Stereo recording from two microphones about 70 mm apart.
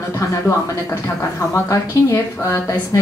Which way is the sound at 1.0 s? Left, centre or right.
Left.